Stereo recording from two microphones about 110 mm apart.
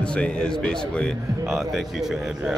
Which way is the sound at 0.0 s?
10° left (ahead or behind).